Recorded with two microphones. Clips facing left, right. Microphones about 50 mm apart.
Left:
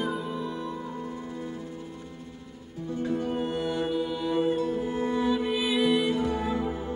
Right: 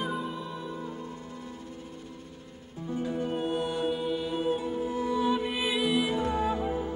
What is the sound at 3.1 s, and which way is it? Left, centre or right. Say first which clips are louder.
Music: right 1 dB; centre.